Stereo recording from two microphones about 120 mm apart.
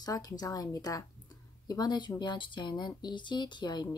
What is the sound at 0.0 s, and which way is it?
A woman's voice, 30° left (ahead or behind).